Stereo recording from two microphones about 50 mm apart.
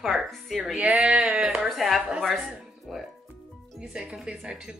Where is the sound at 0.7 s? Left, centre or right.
Right.